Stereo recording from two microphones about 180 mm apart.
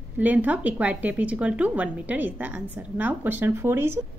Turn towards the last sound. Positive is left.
turn(degrees=-10)  # may be behind; listen again after turning